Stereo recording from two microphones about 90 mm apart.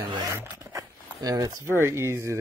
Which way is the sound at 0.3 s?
35° right (ahead or behind).